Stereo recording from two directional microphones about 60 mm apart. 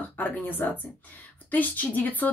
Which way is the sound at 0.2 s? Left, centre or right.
Left.